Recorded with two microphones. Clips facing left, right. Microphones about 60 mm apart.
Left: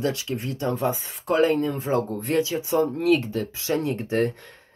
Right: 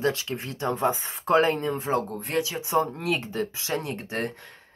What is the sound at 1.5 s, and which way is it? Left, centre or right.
Speech, centre.